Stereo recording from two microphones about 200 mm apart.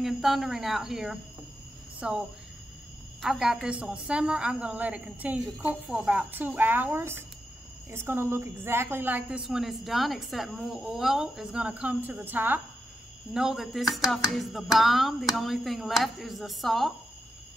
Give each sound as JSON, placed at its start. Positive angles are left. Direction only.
{"t": 0.0, "sound": "a woman's voice", "side_deg": 0}